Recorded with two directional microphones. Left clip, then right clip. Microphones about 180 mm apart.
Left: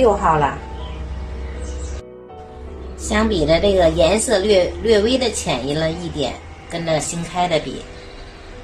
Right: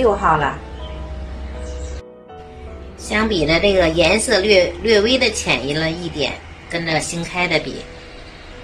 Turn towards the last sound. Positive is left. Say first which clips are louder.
# even
turn(degrees=0)  # may be behind; listen again after turning